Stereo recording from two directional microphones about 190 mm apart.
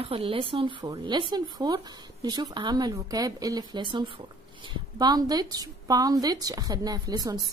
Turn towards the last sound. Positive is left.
turn(degrees=-20)  # may be behind; listen again after turning